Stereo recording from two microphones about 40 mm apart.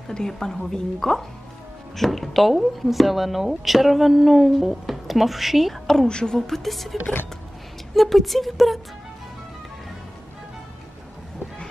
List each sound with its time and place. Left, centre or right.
0.3 s speech: centre
6.0 s speech: centre